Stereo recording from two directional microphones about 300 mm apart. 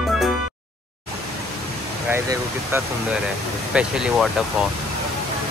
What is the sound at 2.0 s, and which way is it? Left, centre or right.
Speech, centre.